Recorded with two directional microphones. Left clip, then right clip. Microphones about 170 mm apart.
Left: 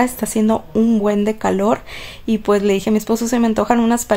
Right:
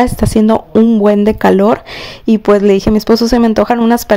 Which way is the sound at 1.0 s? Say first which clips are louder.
Right 8 dB; 45° right (ahead or behind).